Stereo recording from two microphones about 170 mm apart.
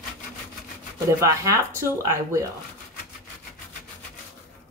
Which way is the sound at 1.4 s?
15° right (ahead or behind).